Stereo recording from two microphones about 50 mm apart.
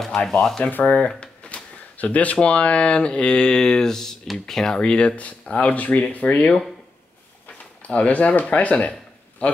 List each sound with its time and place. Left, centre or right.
0.0 s speech: centre
0.7 s speech: left
1.0 s speech: left; by 4.7 s centre
4.7 s speech: centre